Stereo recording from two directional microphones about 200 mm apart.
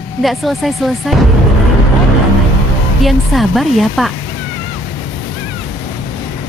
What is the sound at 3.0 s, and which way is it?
Speech, centre (ahead or behind).